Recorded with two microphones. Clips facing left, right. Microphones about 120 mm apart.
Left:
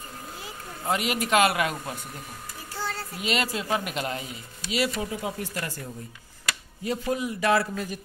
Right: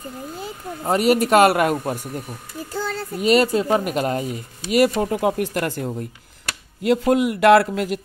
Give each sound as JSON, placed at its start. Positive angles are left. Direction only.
{"t": 0.8, "sound": "speech", "side_deg": -40}
{"t": 3.2, "sound": "speech", "side_deg": -40}
{"t": 6.8, "sound": "speech", "side_deg": -80}